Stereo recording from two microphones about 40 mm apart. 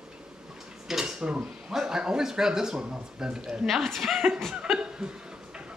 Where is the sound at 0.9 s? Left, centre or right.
Centre.